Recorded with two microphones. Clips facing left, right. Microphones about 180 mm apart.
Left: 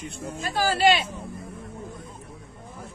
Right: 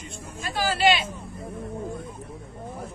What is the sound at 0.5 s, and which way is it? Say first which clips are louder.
Speech: left 1 dB; 45° left (ahead or behind).